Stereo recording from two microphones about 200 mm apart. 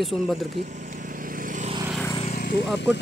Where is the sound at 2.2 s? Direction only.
35° left (ahead or behind).